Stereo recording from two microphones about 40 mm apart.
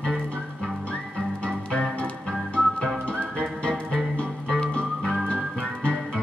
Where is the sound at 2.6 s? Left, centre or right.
Centre.